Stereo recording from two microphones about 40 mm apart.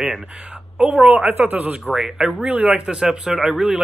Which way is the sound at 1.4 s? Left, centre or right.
Right.